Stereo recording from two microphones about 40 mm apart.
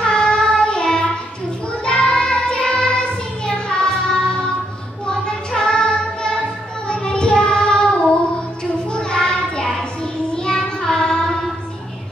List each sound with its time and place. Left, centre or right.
0.0 s child singing: left
1.9 s music: left
5.0 s child singing: centre
8.9 s child singing: centre